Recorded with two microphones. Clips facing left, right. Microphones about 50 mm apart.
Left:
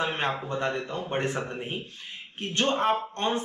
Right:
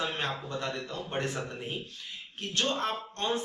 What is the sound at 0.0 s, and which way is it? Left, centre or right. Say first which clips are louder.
Speech: left 5 dB; left.